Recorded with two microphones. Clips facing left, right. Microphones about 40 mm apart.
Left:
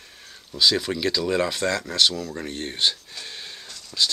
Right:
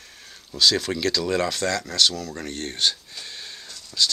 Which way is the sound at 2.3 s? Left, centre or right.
Centre.